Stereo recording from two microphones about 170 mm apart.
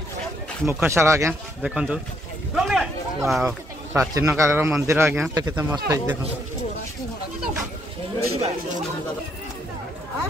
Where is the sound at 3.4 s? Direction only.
15° right (ahead or behind).